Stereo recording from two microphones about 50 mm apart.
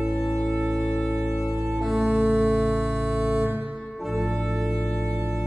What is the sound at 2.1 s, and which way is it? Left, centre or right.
Music, right.